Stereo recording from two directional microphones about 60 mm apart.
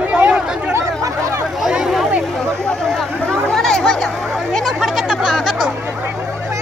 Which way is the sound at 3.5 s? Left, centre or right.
Centre.